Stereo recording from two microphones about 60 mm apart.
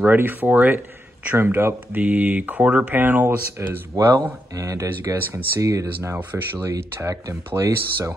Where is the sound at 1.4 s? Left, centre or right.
Right.